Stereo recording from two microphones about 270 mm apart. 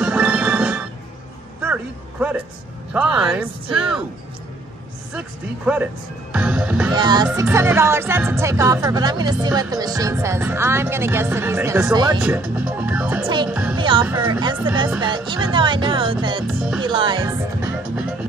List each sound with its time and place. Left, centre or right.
0.0 s music: centre
1.6 s a sound: centre
2.9 s speech: centre
6.3 s speech: centre
6.9 s music: centre
12.2 s speech: centre
13.7 s music: centre
16.4 s speech: centre
16.8 s music: centre